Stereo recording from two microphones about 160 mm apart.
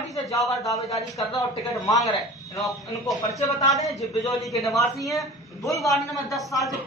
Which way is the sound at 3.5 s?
20° left (ahead or behind).